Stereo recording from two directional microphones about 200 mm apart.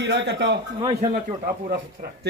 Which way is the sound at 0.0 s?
60° right (ahead or behind).